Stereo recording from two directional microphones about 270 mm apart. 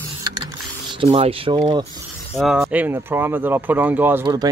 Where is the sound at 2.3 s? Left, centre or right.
Centre.